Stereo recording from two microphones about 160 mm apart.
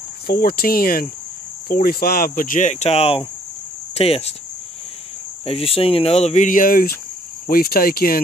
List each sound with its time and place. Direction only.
0.3 s cricket: 70° left (ahead or behind)
1.7 s speech: 70° left (ahead or behind); by 4.3 s 40° left (ahead or behind)
5.4 s speech: 35° left (ahead or behind); by 7.0 s 65° left (ahead or behind)
7.4 s cricket: 70° left (ahead or behind)